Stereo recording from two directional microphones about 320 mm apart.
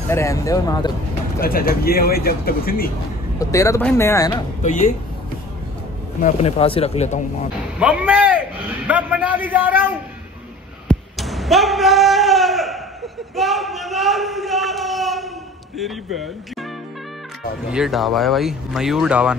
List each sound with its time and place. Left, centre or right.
0.1 s speech: centre
1.4 s speech: left
3.3 s speech: centre
4.6 s speech: left
6.2 s speech: centre
7.8 s a man's voice: centre
10.9 s a sound: centre
13.4 s speech: centre
17.6 s speech: centre